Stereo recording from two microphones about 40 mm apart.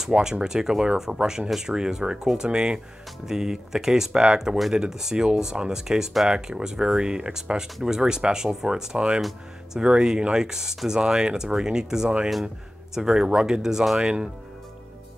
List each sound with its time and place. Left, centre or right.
0.1 s speech: centre